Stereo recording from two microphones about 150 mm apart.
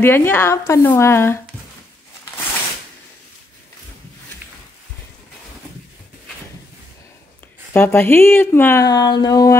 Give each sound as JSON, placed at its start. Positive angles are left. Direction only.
{"t": 0.0, "sound": "speech", "side_deg": 15}
{"t": 7.7, "sound": "speech", "side_deg": 15}